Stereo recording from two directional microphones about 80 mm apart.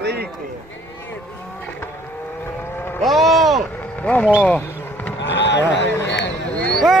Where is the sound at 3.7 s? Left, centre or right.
Centre.